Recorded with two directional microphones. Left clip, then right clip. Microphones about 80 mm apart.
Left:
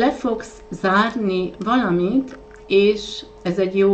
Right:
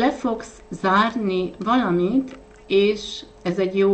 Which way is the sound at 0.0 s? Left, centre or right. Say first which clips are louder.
Left 2 dB; right.